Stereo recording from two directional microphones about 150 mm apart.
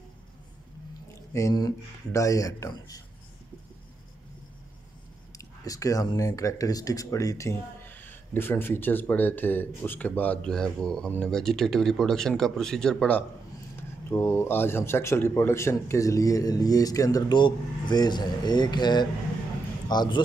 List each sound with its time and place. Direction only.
1.3 s a man's voice: 25° left (ahead or behind)
5.4 s speech: 20° left (ahead or behind); by 13.2 s 5° left (ahead or behind)
13.7 s a man's voice: 15° left (ahead or behind)